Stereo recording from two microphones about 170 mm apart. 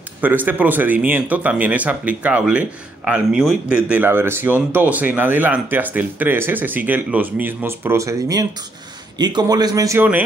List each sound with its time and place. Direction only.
0.2 s a man's voice: 10° right (ahead or behind)